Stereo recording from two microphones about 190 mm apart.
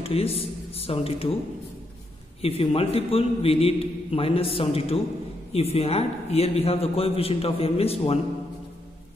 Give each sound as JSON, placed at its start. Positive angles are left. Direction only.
{"t": 0.0, "sound": "a man's voice", "side_deg": 30}
{"t": 2.4, "sound": "a man's voice", "side_deg": 30}